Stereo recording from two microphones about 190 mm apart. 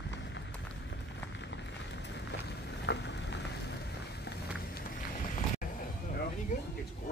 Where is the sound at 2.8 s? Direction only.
65° left (ahead or behind).